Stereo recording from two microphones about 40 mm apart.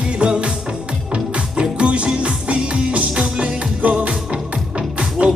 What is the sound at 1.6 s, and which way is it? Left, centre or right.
Music, right.